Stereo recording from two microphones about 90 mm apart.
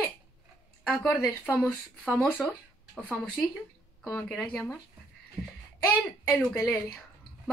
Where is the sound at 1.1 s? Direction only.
20° left (ahead or behind).